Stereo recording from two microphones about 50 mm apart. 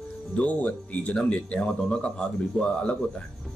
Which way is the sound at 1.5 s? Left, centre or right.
Centre.